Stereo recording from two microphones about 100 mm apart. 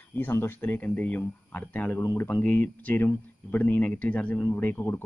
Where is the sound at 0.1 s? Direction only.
25° left (ahead or behind).